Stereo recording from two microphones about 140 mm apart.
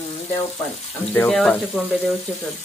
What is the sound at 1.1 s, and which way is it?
Speech, 10° left (ahead or behind).